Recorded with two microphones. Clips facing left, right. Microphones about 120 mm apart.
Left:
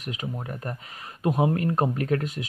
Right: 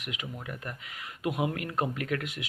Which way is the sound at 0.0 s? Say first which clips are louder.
Left 5 dB; 35° left (ahead or behind).